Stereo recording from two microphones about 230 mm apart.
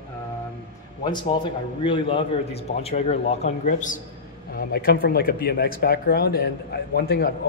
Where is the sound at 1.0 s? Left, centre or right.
Centre.